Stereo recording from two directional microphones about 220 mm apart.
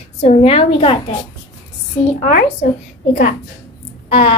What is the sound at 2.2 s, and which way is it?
Speech, 40° left (ahead or behind).